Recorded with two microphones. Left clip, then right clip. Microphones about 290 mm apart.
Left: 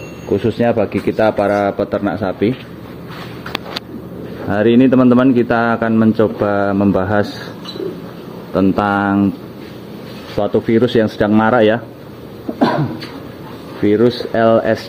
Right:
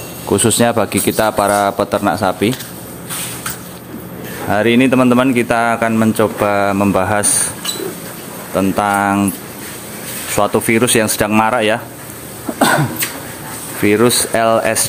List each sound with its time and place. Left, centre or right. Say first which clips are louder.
0.3 s speech: right 2 dB; right
4.5 s speech: even; centre
8.5 s speech: right 1 dB; centre
10.4 s speech: right 1 dB; centre
13.8 s speech: right 1 dB; centre